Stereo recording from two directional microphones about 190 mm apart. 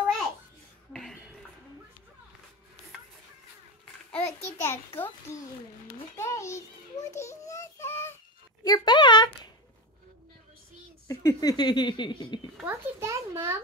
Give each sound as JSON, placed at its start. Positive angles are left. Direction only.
{"t": 0.9, "sound": "a sound", "side_deg": 0}
{"t": 4.1, "sound": "a sound", "side_deg": 10}
{"t": 4.6, "sound": "a child's voice", "side_deg": 15}
{"t": 6.1, "sound": "child singing", "side_deg": 15}
{"t": 8.6, "sound": "speech", "side_deg": 20}
{"t": 11.1, "sound": "speech", "side_deg": 20}
{"t": 12.6, "sound": "a child's voice", "side_deg": -15}